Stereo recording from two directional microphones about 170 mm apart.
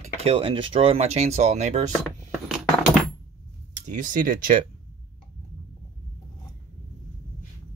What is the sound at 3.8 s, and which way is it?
Speech, 50° right (ahead or behind).